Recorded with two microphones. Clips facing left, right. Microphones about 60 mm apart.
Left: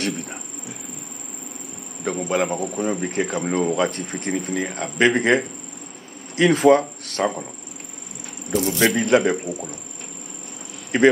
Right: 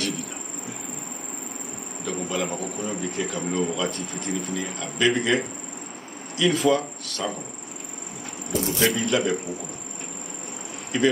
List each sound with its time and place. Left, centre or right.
2.2 s speech: left
2.6 s a man's voice: left
3.1 s speech: left
8.5 s a man's voice: left
10.9 s speech: left